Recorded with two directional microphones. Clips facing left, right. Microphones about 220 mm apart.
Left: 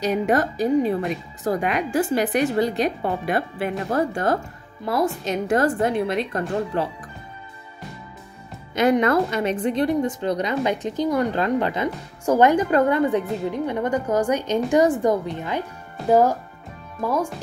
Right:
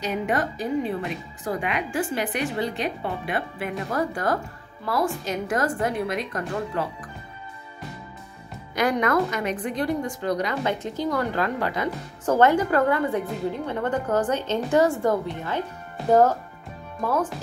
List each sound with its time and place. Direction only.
0.0 s a woman's voice: 40° left (ahead or behind)
8.7 s a woman's voice: 25° left (ahead or behind)